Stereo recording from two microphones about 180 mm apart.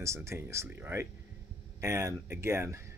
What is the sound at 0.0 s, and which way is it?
Speech, 15° right (ahead or behind).